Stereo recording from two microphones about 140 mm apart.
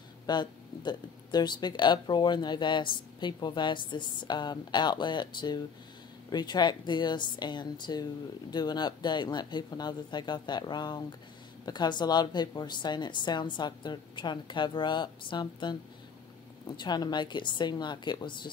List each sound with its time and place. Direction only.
0.3 s speech: 30° left (ahead or behind)